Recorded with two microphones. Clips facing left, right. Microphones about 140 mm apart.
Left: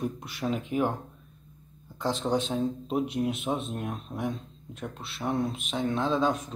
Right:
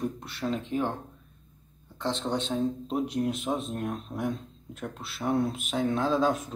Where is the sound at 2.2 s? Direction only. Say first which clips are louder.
Left 1 dB; 5° left (ahead or behind).